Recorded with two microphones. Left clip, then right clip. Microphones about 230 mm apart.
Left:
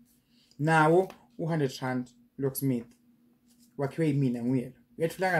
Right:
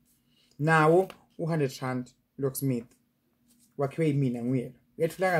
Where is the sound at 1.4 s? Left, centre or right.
Centre.